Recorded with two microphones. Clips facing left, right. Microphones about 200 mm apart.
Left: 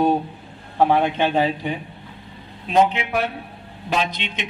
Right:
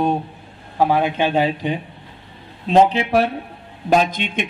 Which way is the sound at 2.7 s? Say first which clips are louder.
Right 4 dB; 35° right (ahead or behind).